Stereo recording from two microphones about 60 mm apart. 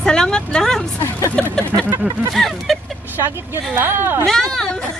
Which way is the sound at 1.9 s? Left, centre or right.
Right.